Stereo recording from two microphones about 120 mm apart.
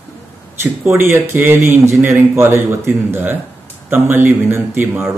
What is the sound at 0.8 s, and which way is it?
A man's voice, 20° right (ahead or behind).